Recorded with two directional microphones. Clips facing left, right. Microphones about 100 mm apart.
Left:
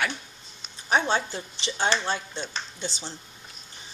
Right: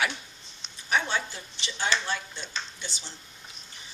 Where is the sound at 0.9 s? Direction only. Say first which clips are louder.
Left 4 dB; 30° left (ahead or behind).